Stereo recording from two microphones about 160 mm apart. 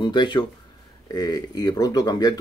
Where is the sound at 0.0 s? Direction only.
30° left (ahead or behind).